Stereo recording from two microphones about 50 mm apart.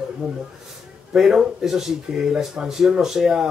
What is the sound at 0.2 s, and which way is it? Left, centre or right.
Speech, centre.